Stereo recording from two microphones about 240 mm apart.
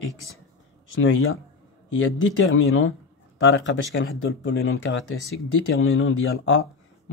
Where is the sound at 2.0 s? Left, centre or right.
Left.